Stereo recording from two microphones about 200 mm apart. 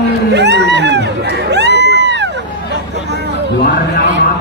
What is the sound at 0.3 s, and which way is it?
Speech, 55° right (ahead or behind).